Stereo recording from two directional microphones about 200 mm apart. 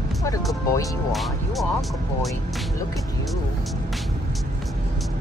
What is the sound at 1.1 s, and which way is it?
Music, centre (ahead or behind).